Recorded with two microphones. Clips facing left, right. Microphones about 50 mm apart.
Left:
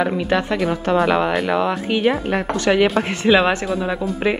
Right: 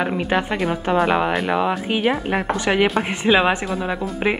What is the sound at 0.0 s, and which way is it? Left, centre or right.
Speech, centre.